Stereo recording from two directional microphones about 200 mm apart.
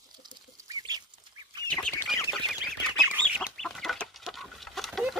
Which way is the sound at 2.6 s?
5° right (ahead or behind).